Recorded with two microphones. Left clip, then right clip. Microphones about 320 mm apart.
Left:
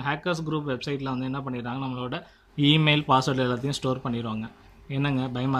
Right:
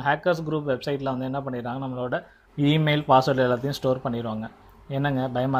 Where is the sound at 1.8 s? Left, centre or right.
Centre.